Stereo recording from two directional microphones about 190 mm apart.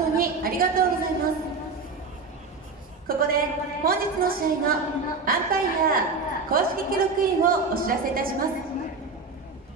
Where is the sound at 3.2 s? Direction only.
50° right (ahead or behind).